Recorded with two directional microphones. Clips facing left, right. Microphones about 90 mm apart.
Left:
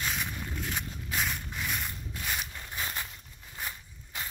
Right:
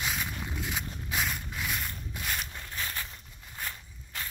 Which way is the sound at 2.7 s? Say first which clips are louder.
Left 1 dB; 20° left (ahead or behind).